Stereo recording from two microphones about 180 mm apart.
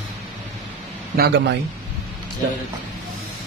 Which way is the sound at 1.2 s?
65° right (ahead or behind).